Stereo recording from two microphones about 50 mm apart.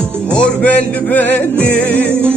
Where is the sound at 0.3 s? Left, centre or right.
Left.